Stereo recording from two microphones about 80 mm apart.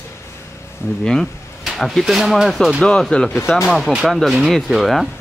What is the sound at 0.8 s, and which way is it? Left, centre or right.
Speech, left.